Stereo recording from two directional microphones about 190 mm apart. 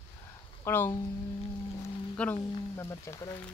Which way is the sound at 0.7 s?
10° left (ahead or behind).